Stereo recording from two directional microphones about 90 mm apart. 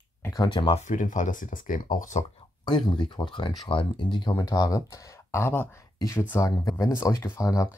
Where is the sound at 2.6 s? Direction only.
55° left (ahead or behind).